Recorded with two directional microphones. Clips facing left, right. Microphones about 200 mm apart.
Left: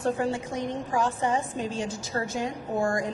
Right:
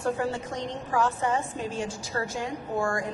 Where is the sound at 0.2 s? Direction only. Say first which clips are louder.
Left 2 dB; 10° left (ahead or behind).